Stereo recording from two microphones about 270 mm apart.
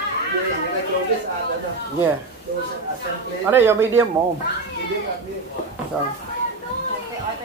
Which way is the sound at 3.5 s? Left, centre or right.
Centre.